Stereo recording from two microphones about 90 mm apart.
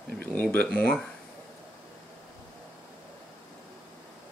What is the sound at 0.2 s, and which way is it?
Speech, 20° left (ahead or behind).